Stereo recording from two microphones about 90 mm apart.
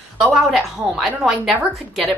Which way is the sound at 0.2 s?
Centre (ahead or behind).